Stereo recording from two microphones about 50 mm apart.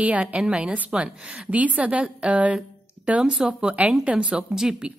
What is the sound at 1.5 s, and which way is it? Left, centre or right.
A woman's voice, right.